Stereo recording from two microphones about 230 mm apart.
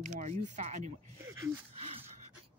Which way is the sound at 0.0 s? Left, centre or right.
Right.